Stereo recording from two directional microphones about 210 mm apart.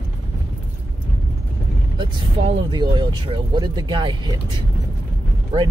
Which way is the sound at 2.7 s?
20° right (ahead or behind).